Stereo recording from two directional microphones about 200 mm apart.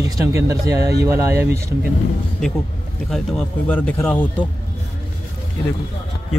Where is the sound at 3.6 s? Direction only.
10° left (ahead or behind).